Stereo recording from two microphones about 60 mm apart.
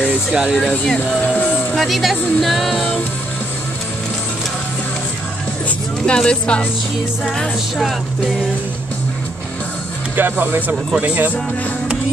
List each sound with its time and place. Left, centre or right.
0.1 s speech: centre
1.2 s speech: left
1.8 s speech: centre
6.0 s speech: centre
10.1 s speech: right